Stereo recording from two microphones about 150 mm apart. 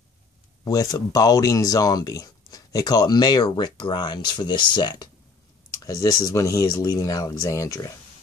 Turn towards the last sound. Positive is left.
turn(degrees=20)  # may be behind; listen again after turning